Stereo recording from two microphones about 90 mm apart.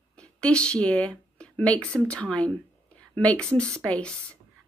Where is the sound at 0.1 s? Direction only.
10° left (ahead or behind).